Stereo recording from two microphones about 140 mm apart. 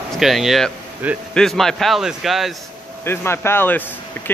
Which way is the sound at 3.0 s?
15° left (ahead or behind).